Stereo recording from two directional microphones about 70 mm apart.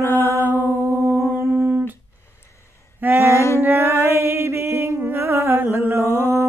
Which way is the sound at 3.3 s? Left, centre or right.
Left.